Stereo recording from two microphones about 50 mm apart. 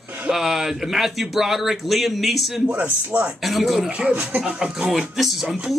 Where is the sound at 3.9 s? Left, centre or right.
Right.